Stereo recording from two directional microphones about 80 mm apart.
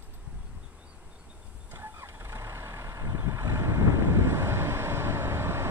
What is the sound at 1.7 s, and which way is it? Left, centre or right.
Vehicle, right.